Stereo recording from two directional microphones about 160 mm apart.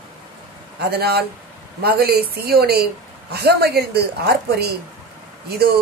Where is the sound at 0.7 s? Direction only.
85° right.